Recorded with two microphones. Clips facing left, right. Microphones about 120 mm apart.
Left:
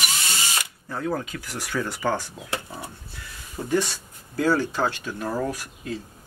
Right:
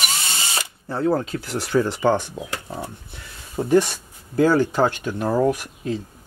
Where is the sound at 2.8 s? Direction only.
20° right (ahead or behind).